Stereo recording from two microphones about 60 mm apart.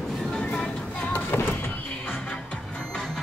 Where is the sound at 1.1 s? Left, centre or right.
Left.